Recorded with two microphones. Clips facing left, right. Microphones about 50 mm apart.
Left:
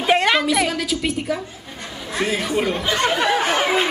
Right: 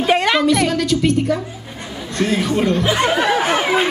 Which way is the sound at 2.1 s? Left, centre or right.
Centre.